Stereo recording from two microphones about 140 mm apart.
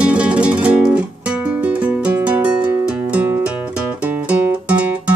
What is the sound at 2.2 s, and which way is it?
Music, 10° right (ahead or behind).